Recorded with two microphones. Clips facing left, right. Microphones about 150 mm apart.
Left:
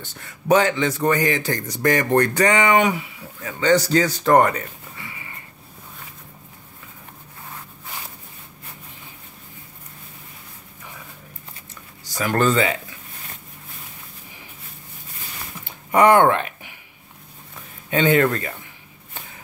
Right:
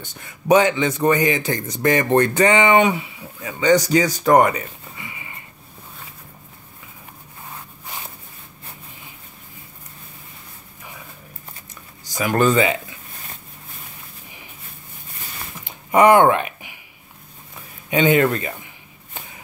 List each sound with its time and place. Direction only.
0.0 s a man's voice: 15° right (ahead or behind)
3.3 s speech: 15° right (ahead or behind)
12.1 s speech: 15° right (ahead or behind)
15.6 s a sound: 20° right (ahead or behind)
17.8 s speech: 15° right (ahead or behind)